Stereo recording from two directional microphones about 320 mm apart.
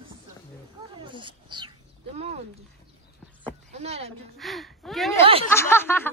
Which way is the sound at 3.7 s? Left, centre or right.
Centre.